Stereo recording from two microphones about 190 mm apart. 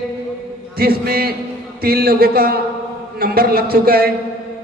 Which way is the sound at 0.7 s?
55° right (ahead or behind).